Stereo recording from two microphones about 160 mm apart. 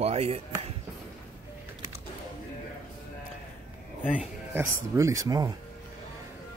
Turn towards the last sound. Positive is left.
turn(degrees=-20)  # may be behind; listen again after turning